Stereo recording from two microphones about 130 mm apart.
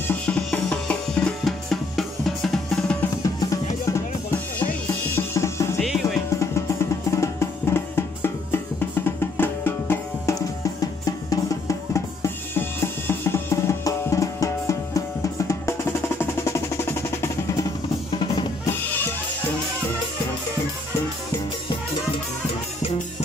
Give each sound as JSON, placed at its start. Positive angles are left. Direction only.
{"t": 0.1, "sound": "drum", "side_deg": 10}
{"t": 3.3, "sound": "drum", "side_deg": 25}
{"t": 5.8, "sound": "music", "side_deg": 0}
{"t": 7.1, "sound": "music", "side_deg": 20}
{"t": 11.1, "sound": "drum", "side_deg": 25}